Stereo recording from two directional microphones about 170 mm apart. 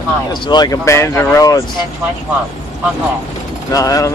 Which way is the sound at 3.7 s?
20° left (ahead or behind).